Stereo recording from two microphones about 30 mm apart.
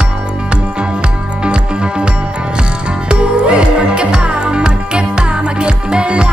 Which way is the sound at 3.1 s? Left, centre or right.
Right.